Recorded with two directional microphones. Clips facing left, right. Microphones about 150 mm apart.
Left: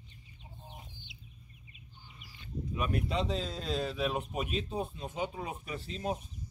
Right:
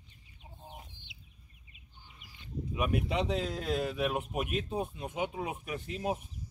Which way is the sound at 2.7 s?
15° right (ahead or behind).